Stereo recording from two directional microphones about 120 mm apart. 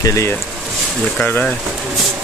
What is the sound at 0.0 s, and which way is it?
Speech, 25° left (ahead or behind).